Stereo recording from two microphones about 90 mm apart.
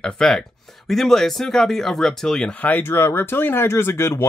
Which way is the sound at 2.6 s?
20° left (ahead or behind).